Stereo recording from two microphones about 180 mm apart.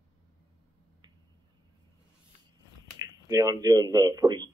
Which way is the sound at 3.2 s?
20° right (ahead or behind).